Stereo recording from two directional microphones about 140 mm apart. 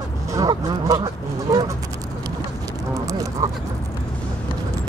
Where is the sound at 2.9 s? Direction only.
25° right (ahead or behind).